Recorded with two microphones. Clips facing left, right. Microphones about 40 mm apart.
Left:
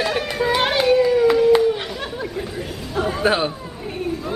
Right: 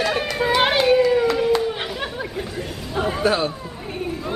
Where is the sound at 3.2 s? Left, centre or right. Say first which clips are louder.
Left 1 dB; left.